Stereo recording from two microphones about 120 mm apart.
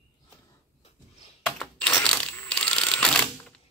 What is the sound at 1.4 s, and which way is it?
Computer keyboard, 10° left (ahead or behind).